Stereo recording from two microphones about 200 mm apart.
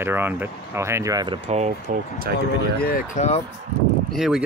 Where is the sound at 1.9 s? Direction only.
40° right (ahead or behind).